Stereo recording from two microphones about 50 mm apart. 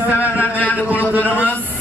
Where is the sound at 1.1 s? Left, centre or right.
Right.